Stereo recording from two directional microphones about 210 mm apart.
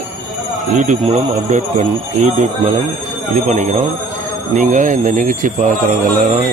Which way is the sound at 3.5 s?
35° right (ahead or behind).